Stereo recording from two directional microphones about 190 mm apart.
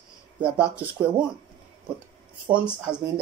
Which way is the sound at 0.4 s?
5° right (ahead or behind).